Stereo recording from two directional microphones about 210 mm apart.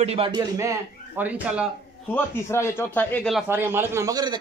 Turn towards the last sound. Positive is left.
turn(degrees=-20)  # may be behind; listen again after turning